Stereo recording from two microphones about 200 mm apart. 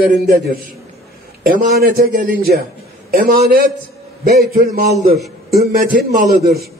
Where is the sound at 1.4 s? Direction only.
50° right (ahead or behind).